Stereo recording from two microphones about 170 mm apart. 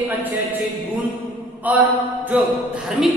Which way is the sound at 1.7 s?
10° right (ahead or behind).